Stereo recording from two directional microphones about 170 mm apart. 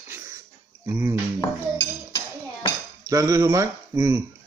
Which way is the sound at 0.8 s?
15° right (ahead or behind).